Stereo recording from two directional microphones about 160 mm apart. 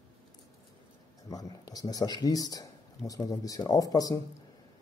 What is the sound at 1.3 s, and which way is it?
Speech, 25° left (ahead or behind).